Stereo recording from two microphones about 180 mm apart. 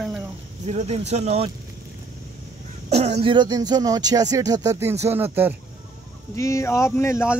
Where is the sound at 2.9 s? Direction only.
35° right (ahead or behind).